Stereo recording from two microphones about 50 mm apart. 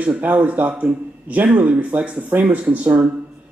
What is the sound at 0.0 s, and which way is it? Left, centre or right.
Speech, right.